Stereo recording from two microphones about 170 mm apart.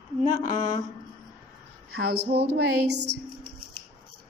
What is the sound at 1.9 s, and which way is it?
Speech, 70° right (ahead or behind).